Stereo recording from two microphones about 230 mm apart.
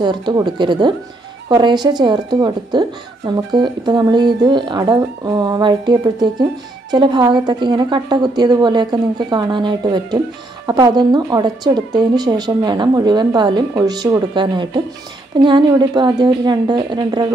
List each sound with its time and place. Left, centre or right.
0.0 s speech: centre